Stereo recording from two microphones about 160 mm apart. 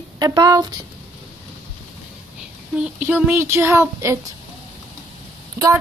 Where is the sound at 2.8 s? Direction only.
10° right (ahead or behind).